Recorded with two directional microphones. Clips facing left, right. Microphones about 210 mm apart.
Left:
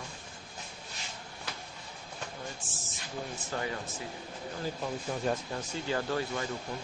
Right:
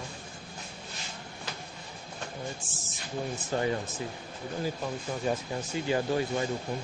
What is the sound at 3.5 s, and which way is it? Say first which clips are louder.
Speech: right 7 dB; 25° right (ahead or behind).